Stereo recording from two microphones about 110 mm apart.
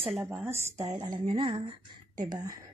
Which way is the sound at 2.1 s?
35° right (ahead or behind).